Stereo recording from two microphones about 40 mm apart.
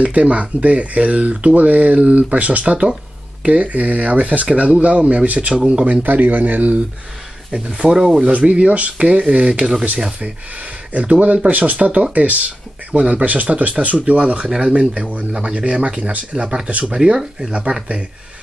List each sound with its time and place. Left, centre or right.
0.0 s speech: right
7.5 s speech: right
10.9 s speech: right
16.3 s speech: right